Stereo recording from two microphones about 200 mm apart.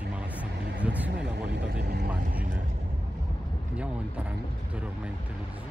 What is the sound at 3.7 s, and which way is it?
Speech, 5° right (ahead or behind).